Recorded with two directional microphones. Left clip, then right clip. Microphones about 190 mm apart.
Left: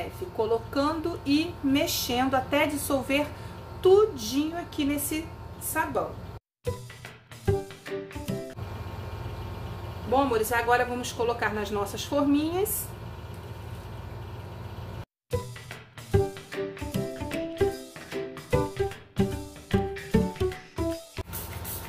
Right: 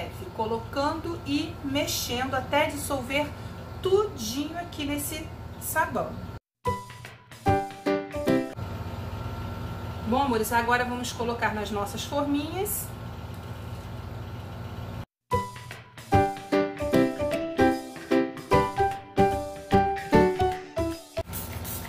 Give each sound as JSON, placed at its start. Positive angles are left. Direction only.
{"t": 0.7, "sound": "a woman's voice", "side_deg": 55}
{"t": 6.7, "sound": "music", "side_deg": 0}
{"t": 10.1, "sound": "speech", "side_deg": 45}
{"t": 15.3, "sound": "music", "side_deg": 0}